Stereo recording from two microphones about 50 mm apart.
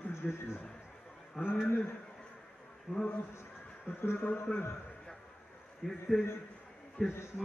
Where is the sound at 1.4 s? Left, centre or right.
Centre.